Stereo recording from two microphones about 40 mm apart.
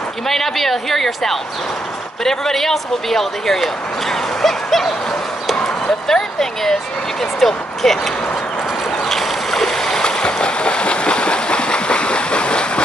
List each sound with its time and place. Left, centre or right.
0.3 s a woman's voice: centre
6.0 s a sound: centre
7.3 s speech: centre
9.1 s stream: centre; by 12.8 s left